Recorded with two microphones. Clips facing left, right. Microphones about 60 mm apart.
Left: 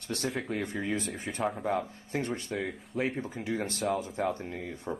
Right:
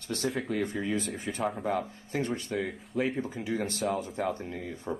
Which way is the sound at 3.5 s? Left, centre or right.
Left.